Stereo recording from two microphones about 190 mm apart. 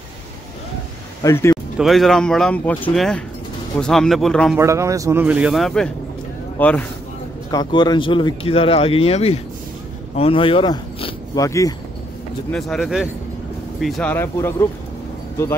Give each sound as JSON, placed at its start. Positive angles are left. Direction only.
{"t": 1.2, "sound": "speech", "side_deg": 15}
{"t": 1.8, "sound": "speech", "side_deg": 0}
{"t": 4.6, "sound": "a man's voice", "side_deg": -15}
{"t": 5.2, "sound": "speech", "side_deg": -5}
{"t": 7.5, "sound": "speech", "side_deg": 25}
{"t": 12.4, "sound": "speech", "side_deg": 0}
{"t": 14.1, "sound": "speech", "side_deg": 10}